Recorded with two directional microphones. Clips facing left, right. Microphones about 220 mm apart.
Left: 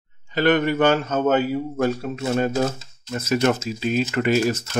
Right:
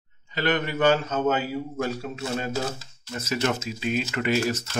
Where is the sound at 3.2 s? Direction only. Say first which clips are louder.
Left 6 dB; 55° left (ahead or behind).